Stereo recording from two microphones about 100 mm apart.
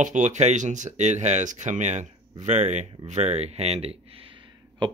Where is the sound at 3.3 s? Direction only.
90° right.